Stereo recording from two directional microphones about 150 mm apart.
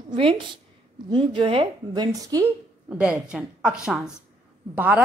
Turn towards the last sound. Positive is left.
turn(degrees=-10)  # may be behind; listen again after turning